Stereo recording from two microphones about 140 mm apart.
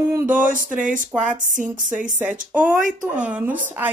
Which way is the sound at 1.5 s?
65° right (ahead or behind).